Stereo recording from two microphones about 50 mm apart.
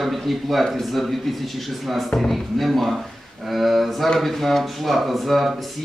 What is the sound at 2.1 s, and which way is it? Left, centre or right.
A man's voice, centre.